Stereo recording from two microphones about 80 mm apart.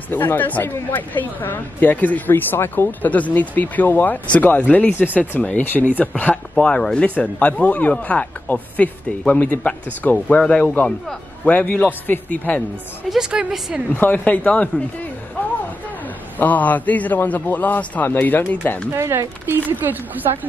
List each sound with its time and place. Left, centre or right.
0.1 s speech: left
10.6 s speech: left
13.1 s a woman's voice: centre
13.9 s speech: left
16.3 s speech: left
18.9 s speech: right